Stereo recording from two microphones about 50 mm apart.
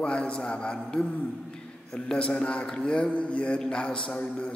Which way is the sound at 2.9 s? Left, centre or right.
Left.